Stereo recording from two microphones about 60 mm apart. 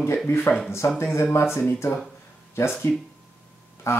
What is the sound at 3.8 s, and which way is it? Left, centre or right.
Speech, left.